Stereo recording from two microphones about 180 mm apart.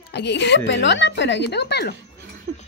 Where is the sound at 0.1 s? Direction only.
70° left (ahead or behind).